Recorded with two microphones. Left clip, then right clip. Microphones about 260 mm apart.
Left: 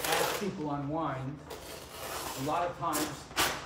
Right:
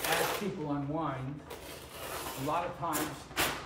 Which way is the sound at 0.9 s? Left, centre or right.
Centre.